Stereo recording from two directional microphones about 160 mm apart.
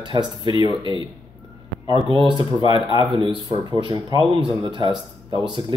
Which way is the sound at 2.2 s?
30° right (ahead or behind).